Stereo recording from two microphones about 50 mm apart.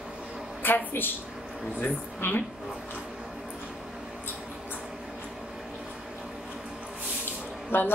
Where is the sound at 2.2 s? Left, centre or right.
Left.